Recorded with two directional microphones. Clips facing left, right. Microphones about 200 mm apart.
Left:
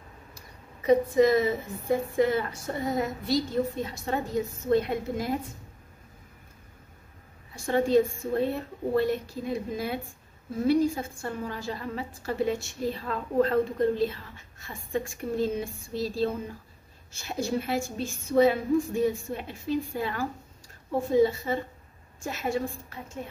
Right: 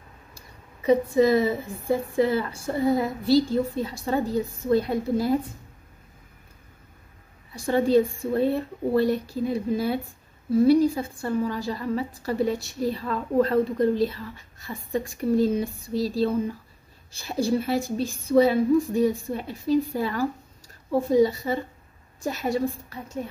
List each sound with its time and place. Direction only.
0.8 s a woman's voice: 30° right (ahead or behind)
7.5 s a woman's voice: 35° right (ahead or behind)